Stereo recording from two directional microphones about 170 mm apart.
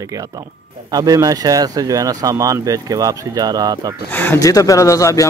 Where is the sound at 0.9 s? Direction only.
20° right (ahead or behind).